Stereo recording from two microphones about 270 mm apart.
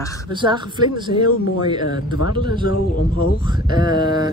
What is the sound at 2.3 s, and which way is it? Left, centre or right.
Speech, centre.